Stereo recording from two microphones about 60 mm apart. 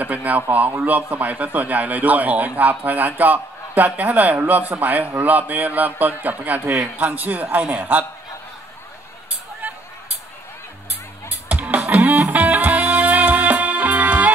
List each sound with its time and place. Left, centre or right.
0.0 s a man's voice: right
11.5 s music: right